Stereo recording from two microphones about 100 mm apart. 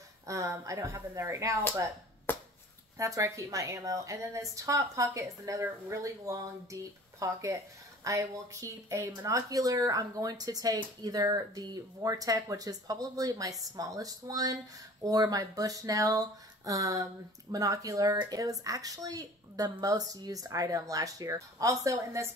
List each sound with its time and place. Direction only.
0.3 s speech: 30° right (ahead or behind)
3.0 s a woman's voice: 35° right (ahead or behind)